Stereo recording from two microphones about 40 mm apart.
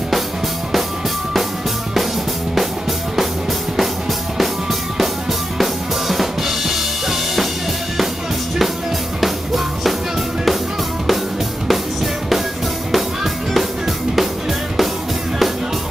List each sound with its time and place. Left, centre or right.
4.4 s music: centre
5.6 s drum kit: centre
12.9 s music: centre